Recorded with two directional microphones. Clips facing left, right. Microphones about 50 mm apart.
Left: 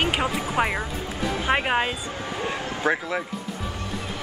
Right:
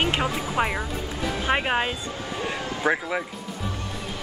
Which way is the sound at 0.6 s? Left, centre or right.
Centre.